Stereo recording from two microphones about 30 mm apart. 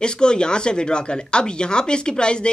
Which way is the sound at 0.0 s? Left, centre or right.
Left.